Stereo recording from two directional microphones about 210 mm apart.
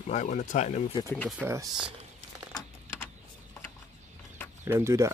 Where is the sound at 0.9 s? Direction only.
10° left (ahead or behind).